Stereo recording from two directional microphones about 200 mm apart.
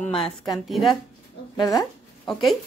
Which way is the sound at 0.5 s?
Centre (ahead or behind).